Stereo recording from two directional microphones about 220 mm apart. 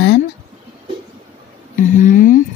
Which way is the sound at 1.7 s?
35° left (ahead or behind).